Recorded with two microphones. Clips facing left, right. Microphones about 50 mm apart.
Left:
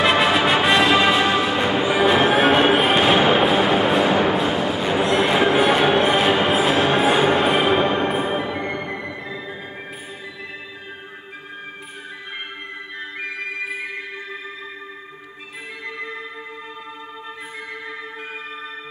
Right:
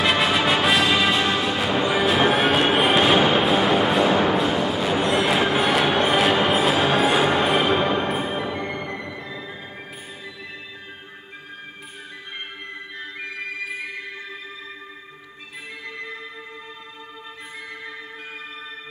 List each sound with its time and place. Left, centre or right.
0.0 s music: centre
13.2 s music: centre